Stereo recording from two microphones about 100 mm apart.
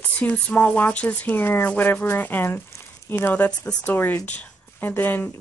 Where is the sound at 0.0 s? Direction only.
15° left (ahead or behind).